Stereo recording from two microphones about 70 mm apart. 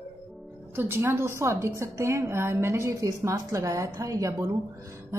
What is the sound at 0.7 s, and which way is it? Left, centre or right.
A woman's voice, right.